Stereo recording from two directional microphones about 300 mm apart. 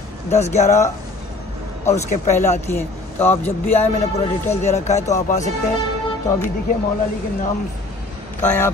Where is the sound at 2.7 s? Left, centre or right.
Centre.